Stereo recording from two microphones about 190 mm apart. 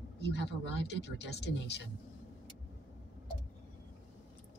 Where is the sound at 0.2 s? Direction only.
65° left (ahead or behind).